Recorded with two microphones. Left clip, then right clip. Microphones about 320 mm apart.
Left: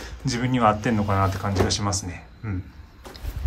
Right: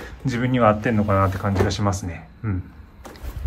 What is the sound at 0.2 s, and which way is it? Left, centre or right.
Speech, centre.